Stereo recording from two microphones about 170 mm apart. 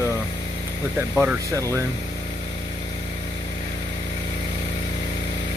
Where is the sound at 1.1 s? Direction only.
5° right (ahead or behind).